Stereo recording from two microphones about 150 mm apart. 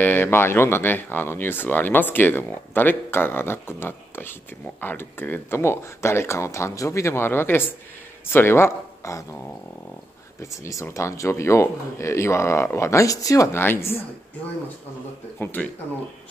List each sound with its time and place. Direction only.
0.0 s speech: 15° left (ahead or behind)
10.4 s speech: 20° left (ahead or behind)
15.3 s speech: 10° left (ahead or behind)